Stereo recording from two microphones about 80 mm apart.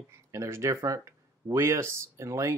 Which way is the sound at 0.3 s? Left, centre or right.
Right.